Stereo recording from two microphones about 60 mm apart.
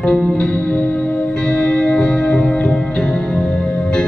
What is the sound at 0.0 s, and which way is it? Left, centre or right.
Music, centre.